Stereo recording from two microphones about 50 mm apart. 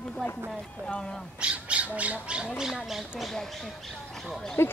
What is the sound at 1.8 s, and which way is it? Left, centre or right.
Speech, right.